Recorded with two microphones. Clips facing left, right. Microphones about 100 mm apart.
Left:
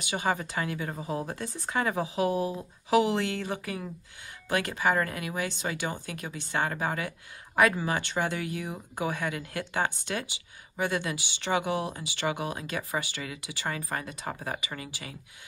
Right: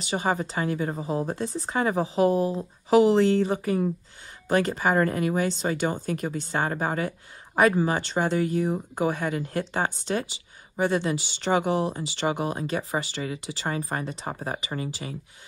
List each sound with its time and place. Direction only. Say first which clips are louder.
0.1 s speech: right 3 dB; 35° right (ahead or behind)